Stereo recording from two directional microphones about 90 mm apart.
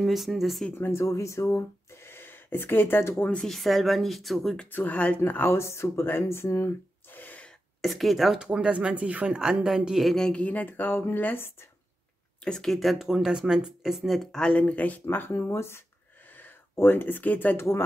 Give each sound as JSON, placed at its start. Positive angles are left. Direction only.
{"t": 0.0, "sound": "speech", "side_deg": 0}
{"t": 0.7, "sound": "speech", "side_deg": 30}
{"t": 3.3, "sound": "speech", "side_deg": 5}
{"t": 4.6, "sound": "speech", "side_deg": 20}
{"t": 7.8, "sound": "speech", "side_deg": 0}
{"t": 10.4, "sound": "speech", "side_deg": 20}
{"t": 12.4, "sound": "speech", "side_deg": 5}